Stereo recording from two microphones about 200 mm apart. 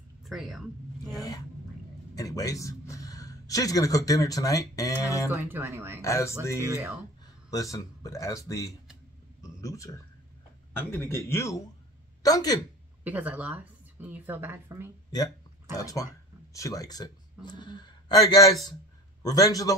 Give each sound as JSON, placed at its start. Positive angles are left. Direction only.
{"t": 0.2, "sound": "a sound", "side_deg": 0}
{"t": 1.1, "sound": "a sound", "side_deg": 20}
{"t": 2.1, "sound": "a man's voice", "side_deg": 20}
{"t": 5.3, "sound": "a woman's voice", "side_deg": -15}
{"t": 6.0, "sound": "speech", "side_deg": 15}
{"t": 6.6, "sound": "a woman's voice", "side_deg": -15}
{"t": 7.5, "sound": "a man's voice", "side_deg": 15}
{"t": 13.0, "sound": "a woman's voice", "side_deg": -10}
{"t": 15.0, "sound": "speech", "side_deg": 20}